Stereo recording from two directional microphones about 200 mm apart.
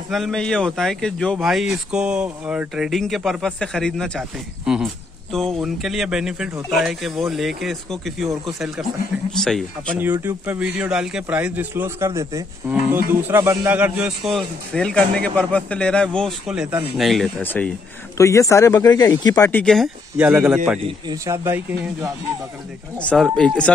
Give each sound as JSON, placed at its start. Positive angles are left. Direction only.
{"t": 0.1, "sound": "a man's voice", "side_deg": 0}
{"t": 10.1, "sound": "a man's voice", "side_deg": -10}
{"t": 19.6, "sound": "a man's voice", "side_deg": 0}
{"t": 22.9, "sound": "a man's voice", "side_deg": 5}